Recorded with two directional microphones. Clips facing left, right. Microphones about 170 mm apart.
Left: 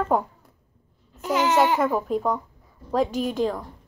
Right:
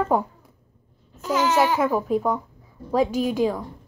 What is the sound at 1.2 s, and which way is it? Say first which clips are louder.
Speech: even; 20° left (ahead or behind).